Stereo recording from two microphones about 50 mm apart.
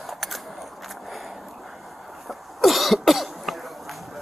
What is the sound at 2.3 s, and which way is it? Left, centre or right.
Cough, centre.